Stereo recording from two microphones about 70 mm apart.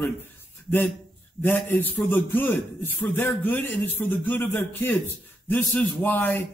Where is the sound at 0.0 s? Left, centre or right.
Left.